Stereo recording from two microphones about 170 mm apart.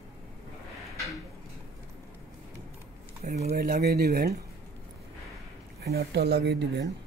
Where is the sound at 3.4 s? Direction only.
65° right (ahead or behind).